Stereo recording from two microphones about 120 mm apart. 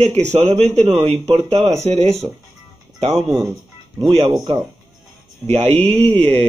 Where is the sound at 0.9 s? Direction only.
35° right (ahead or behind).